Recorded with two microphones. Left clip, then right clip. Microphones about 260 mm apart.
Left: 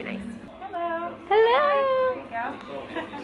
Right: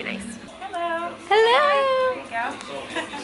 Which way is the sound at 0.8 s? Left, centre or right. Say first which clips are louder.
Right 3 dB; centre.